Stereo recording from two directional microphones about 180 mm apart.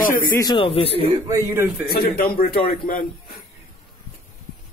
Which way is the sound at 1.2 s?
15° right (ahead or behind).